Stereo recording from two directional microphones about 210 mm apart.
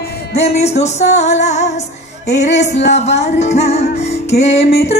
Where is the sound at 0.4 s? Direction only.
30° left (ahead or behind).